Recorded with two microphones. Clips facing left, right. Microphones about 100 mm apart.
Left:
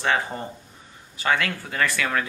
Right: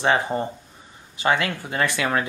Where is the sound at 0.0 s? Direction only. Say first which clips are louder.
Right 4 dB; 20° right (ahead or behind).